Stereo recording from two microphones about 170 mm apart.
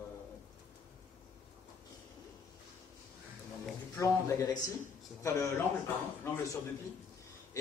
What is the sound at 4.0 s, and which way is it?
A man's voice, 20° left (ahead or behind).